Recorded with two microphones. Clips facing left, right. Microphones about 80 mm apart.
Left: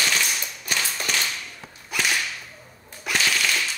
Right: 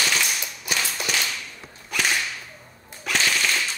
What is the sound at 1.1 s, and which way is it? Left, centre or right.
Whip, left.